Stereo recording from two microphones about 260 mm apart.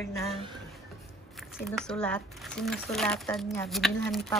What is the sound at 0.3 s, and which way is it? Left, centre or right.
Speech, centre.